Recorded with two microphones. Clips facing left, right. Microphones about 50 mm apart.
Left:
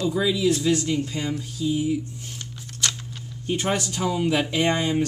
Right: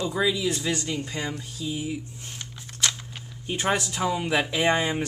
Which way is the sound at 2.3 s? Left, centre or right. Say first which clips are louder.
Left 2 dB; right.